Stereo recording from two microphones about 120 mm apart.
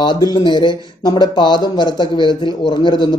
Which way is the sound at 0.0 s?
40° left (ahead or behind).